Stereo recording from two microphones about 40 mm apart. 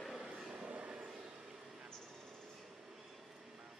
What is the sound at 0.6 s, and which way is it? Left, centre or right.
Train, right.